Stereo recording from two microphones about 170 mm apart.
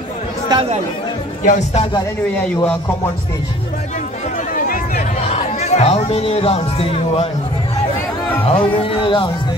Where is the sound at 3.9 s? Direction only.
45° left (ahead or behind).